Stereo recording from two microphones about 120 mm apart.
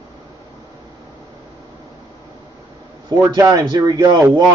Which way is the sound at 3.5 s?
30° right (ahead or behind).